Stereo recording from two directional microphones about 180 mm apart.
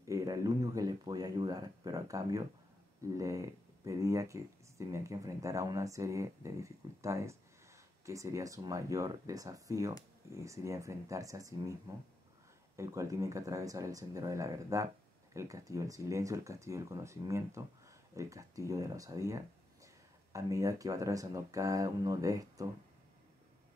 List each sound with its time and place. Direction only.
0.1 s speech: 20° right (ahead or behind)
12.7 s speech: 15° right (ahead or behind)